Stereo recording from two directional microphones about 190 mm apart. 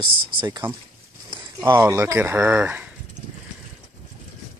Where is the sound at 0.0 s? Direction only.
25° right (ahead or behind).